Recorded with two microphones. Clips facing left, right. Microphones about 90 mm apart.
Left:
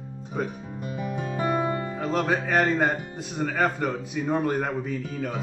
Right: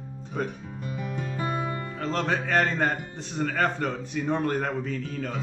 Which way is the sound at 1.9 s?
10° left (ahead or behind).